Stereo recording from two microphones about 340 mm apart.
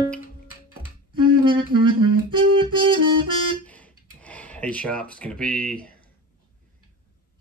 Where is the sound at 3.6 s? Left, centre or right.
Centre.